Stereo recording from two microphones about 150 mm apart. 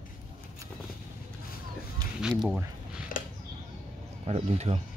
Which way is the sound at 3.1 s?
65° left (ahead or behind).